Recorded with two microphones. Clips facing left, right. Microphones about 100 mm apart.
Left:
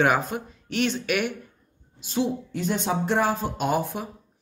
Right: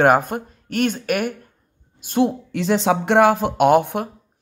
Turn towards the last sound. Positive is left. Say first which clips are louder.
# right 10 dB
turn(degrees=-65)  # may be behind; listen again after turning